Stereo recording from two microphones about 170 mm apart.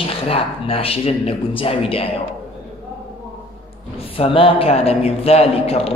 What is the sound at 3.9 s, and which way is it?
A man's voice, 35° left (ahead or behind).